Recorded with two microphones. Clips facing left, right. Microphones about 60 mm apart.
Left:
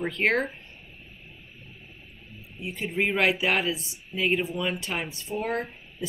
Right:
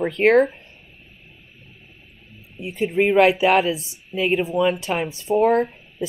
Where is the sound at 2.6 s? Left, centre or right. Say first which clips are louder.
Right 8 dB; centre.